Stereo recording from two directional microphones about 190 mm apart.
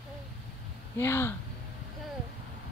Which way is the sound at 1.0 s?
15° left (ahead or behind).